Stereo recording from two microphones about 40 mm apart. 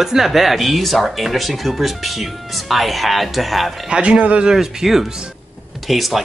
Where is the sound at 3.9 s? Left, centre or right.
Right.